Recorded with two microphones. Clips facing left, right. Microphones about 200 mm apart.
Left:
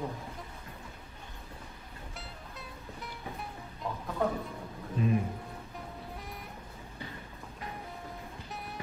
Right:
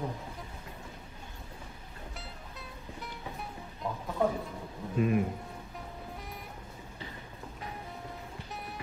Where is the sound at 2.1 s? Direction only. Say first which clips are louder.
Even; centre (ahead or behind).